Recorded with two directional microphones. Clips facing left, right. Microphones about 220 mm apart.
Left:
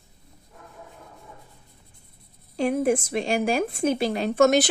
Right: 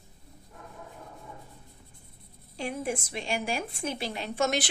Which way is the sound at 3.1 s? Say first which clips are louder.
Left 9 dB; 45° left (ahead or behind).